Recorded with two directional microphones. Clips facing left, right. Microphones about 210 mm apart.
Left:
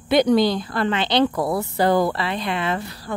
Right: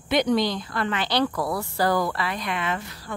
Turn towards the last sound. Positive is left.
turn(degrees=35)  # may be behind; listen again after turning